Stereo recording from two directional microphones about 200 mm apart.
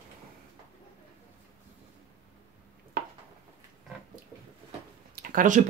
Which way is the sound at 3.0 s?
50° right (ahead or behind).